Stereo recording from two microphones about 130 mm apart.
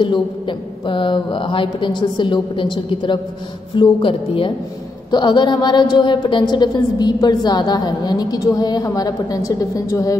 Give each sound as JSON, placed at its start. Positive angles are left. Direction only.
{"t": 0.0, "sound": "a woman's voice", "side_deg": 40}